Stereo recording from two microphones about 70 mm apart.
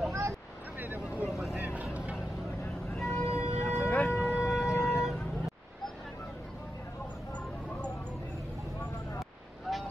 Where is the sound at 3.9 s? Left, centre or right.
Left.